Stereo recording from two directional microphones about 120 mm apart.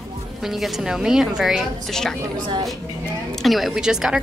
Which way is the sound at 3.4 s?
Centre (ahead or behind).